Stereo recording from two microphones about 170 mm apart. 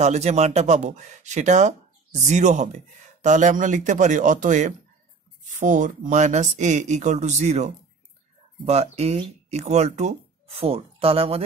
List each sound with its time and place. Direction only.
0.0 s speech: 40° right (ahead or behind)